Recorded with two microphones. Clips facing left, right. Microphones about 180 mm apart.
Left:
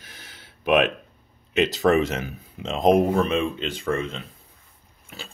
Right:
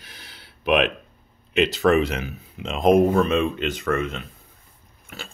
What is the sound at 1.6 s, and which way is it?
Speech, 40° left (ahead or behind).